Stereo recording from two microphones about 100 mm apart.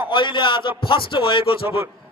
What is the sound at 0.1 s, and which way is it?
Speech, 55° left (ahead or behind).